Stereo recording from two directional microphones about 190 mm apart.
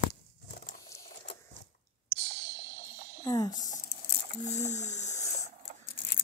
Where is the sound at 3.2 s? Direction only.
20° left (ahead or behind).